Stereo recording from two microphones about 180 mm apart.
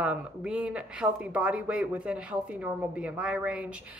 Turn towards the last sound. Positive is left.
turn(degrees=-5)  # may be behind; listen again after turning